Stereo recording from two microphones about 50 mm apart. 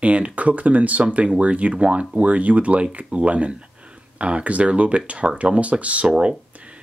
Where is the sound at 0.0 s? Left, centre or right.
Right.